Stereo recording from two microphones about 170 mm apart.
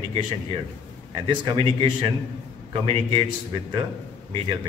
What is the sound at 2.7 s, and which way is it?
Speech, 35° right (ahead or behind).